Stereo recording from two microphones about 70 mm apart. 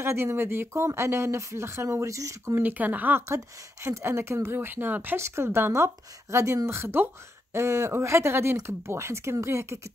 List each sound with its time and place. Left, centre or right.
0.0 s speech: right
2.6 s speech: right
3.3 s speech: right
5.2 s speech: right